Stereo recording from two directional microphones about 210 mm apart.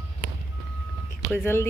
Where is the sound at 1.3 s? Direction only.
10° left (ahead or behind).